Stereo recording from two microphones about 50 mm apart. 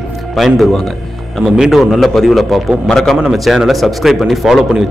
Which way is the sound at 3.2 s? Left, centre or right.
Centre.